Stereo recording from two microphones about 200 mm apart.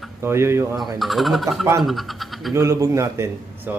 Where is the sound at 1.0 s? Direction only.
Centre (ahead or behind).